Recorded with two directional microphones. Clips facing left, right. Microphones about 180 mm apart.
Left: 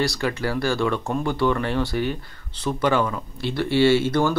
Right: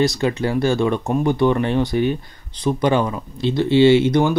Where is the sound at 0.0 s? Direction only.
20° right (ahead or behind).